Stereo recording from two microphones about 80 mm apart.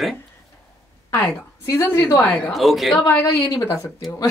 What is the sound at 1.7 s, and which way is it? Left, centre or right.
Speech, left.